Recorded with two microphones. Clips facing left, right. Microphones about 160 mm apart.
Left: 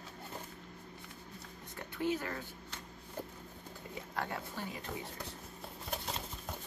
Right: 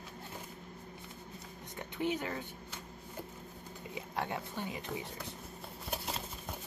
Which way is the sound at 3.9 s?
20° right (ahead or behind).